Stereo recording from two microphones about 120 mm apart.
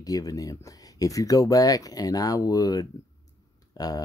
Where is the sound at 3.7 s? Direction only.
30° left (ahead or behind).